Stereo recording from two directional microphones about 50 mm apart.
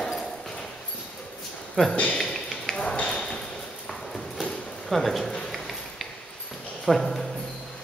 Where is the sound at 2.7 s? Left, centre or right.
Centre.